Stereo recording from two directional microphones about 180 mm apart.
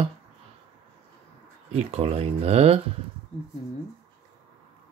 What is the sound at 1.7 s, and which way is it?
Speech, 35° right (ahead or behind).